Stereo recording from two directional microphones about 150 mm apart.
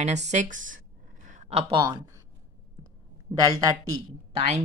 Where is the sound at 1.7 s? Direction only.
30° right (ahead or behind).